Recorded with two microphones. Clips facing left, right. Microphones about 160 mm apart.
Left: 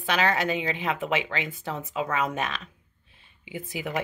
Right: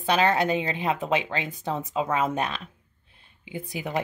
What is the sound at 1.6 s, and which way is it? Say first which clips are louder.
Speech: right 3 dB; 20° right (ahead or behind).